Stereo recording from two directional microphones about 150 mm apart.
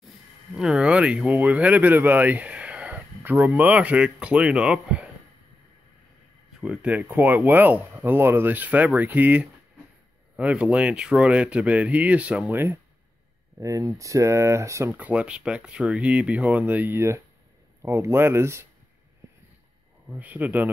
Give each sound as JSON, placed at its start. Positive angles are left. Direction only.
{"t": 0.6, "sound": "speech", "side_deg": -5}
{"t": 6.6, "sound": "speech", "side_deg": -5}
{"t": 20.1, "sound": "speech", "side_deg": -10}